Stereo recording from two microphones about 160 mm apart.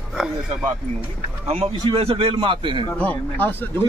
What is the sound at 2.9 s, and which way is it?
Speech, 10° left (ahead or behind).